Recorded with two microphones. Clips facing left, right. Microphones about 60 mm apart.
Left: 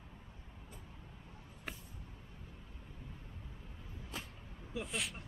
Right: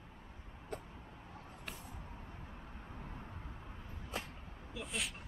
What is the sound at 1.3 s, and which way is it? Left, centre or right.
Vehicle, right.